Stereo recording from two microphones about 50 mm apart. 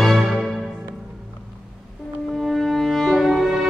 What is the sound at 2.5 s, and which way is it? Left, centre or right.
Music, centre.